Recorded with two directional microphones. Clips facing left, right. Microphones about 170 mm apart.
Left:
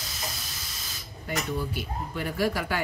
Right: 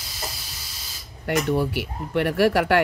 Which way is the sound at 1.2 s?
70° right (ahead or behind).